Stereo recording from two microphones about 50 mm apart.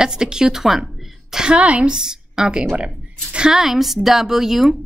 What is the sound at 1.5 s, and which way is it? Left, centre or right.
Speech, right.